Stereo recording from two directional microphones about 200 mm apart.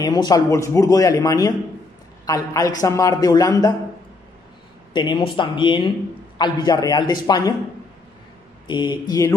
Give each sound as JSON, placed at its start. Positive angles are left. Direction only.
{"t": 0.0, "sound": "a man's voice", "side_deg": 20}
{"t": 4.9, "sound": "a man's voice", "side_deg": 25}
{"t": 8.6, "sound": "a man's voice", "side_deg": 20}